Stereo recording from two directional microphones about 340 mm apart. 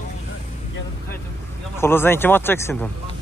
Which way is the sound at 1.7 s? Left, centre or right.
Centre.